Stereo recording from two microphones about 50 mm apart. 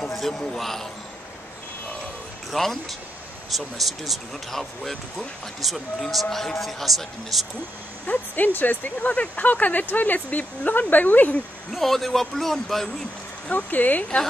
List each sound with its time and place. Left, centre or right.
0.1 s a sound: centre
0.6 s speech: centre
2.5 s speech: centre
8.1 s speech: left
11.7 s speech: centre
13.5 s speech: left